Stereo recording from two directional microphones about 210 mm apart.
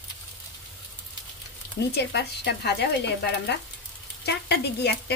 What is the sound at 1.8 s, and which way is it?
Speech, 55° left (ahead or behind).